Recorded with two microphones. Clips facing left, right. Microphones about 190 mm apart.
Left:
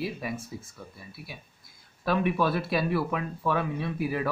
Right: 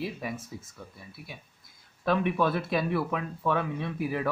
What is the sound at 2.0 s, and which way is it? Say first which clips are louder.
Speech: even; 5° left (ahead or behind).